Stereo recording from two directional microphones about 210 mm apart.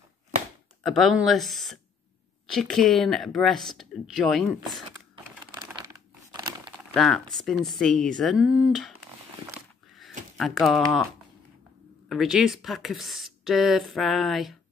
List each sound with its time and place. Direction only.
0.8 s speech: centre (ahead or behind)
5.1 s crumpling: 20° right (ahead or behind)
6.9 s speech: centre (ahead or behind)
10.3 s speech: centre (ahead or behind)
12.1 s speech: centre (ahead or behind)